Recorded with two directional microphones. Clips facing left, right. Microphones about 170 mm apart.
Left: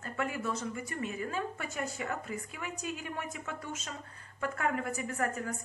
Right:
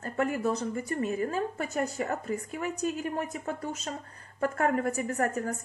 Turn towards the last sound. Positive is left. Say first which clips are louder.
# right 5 dB
turn(degrees=-40)  # may be behind; listen again after turning